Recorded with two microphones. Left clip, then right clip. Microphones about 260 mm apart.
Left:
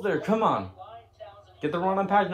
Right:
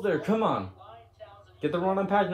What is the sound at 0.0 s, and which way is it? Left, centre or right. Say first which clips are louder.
Speech: left 2 dB; left.